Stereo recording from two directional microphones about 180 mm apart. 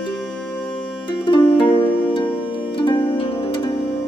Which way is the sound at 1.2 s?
30° left (ahead or behind).